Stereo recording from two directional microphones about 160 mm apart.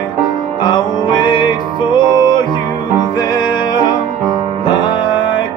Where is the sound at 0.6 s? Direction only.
30° left (ahead or behind).